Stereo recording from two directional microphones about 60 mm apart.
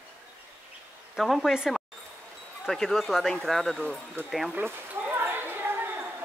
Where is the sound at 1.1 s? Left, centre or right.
Centre.